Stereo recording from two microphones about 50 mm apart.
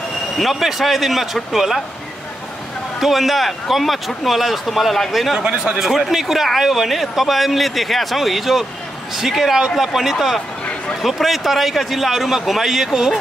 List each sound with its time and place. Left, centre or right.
0.4 s a man's voice: centre
3.0 s a man's voice: centre